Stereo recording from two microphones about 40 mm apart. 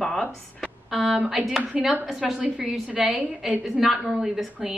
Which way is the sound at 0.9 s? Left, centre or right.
Centre.